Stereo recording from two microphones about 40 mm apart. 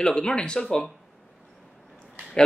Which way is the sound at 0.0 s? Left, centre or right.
Centre.